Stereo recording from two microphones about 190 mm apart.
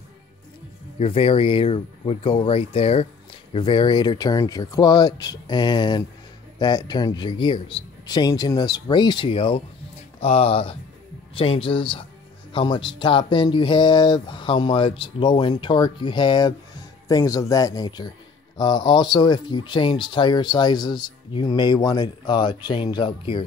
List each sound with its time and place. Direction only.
0.9 s speech: 30° left (ahead or behind)